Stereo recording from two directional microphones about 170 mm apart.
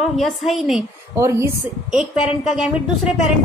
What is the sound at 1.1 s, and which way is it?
Speech, 15° right (ahead or behind).